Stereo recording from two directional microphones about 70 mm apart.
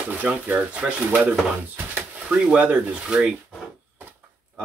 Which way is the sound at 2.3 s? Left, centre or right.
Centre.